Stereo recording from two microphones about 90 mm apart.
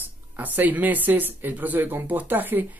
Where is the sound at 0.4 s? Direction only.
20° right (ahead or behind).